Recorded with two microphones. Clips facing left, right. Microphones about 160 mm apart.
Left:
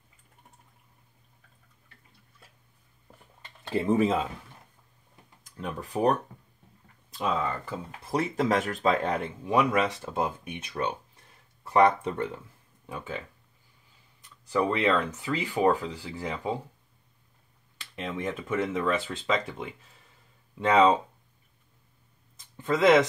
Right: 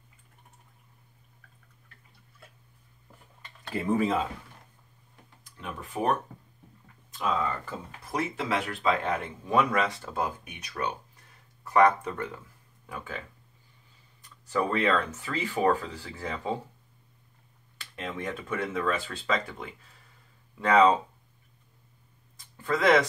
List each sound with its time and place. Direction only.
3.6 s speech: 25° left (ahead or behind)
5.4 s speech: 40° left (ahead or behind)
7.1 s a sound: 30° left (ahead or behind)
8.0 s speech: 30° left (ahead or behind)
9.5 s speech: 15° left (ahead or behind)
14.7 s speech: 15° left (ahead or behind)
18.1 s speech: 20° left (ahead or behind)
22.6 s speech: 20° left (ahead or behind)